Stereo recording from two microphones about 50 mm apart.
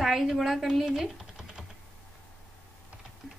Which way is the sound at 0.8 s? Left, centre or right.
Centre.